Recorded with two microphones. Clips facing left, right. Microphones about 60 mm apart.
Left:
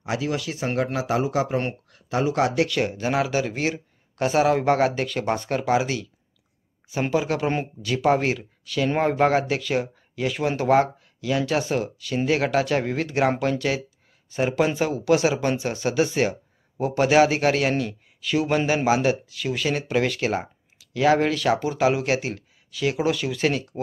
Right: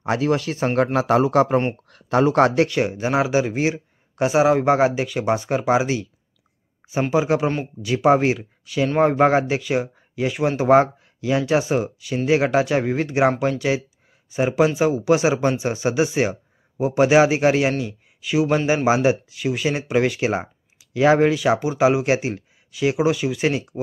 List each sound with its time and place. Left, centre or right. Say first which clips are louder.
0.0 s speech: right 6 dB; right
0.9 s a man's voice: right 7 dB; right
2.5 s speech: right 4 dB; right
2.8 s speech: right 3 dB; centre
10.7 s speech: right 5 dB; right